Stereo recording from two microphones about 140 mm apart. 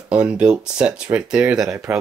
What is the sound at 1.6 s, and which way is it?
Speech, 20° right (ahead or behind).